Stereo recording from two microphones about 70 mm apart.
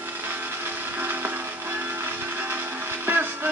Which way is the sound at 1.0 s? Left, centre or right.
Right.